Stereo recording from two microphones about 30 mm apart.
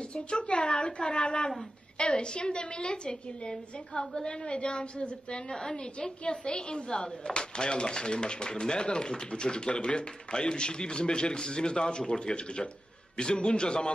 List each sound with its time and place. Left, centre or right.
0.1 s speech: left
5.5 s a woman's voice: left